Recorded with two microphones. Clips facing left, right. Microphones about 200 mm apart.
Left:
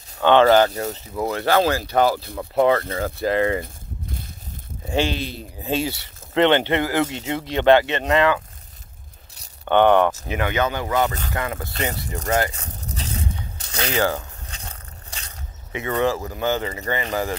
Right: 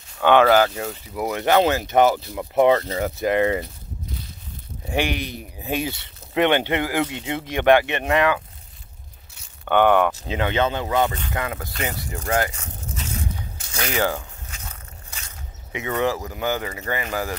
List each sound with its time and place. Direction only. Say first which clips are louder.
0.2 s speech: left 1 dB; 10° right (ahead or behind)
4.9 s speech: left 1 dB; 15° right (ahead or behind)
9.7 s speech: left 2 dB; 10° right (ahead or behind)
10.2 s speech: right 1 dB; 20° right (ahead or behind)
12.5 s a sound: left 1 dB; 35° left (ahead or behind)
14.5 s biting: left 1 dB; 30° left (ahead or behind)
15.7 s speech: left 1 dB; 15° right (ahead or behind)